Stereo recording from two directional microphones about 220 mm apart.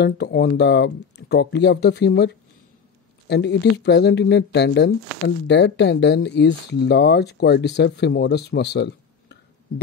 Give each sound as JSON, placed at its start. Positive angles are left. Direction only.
{"t": 0.0, "sound": "speech", "side_deg": 50}